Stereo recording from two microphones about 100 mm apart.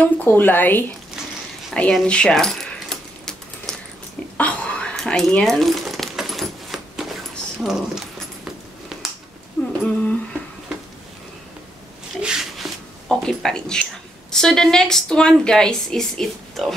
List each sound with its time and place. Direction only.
0.0 s speech: 15° left (ahead or behind)
1.7 s keys jangling: 5° left (ahead or behind)
4.4 s a sound: 10° left (ahead or behind)
9.7 s humming: 10° left (ahead or behind)
12.2 s a sound: 5° right (ahead or behind)
13.2 s a woman's voice: 5° left (ahead or behind)